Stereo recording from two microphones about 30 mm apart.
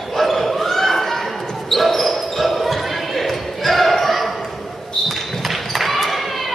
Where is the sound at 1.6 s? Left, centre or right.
Centre.